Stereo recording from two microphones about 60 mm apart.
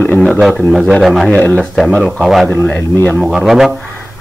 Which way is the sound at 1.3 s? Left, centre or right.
Left.